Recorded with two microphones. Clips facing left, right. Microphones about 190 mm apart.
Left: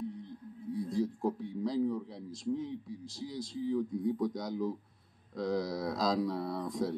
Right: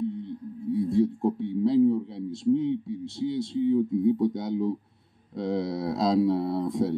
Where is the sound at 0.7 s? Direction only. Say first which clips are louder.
Right 9 dB; 30° right (ahead or behind).